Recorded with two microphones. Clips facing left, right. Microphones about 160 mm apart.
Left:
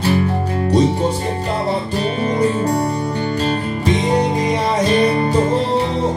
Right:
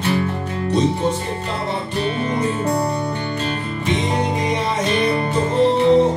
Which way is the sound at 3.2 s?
35° left (ahead or behind).